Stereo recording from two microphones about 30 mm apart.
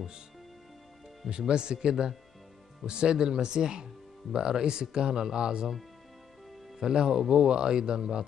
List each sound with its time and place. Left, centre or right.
1.5 s speech: right
6.8 s speech: right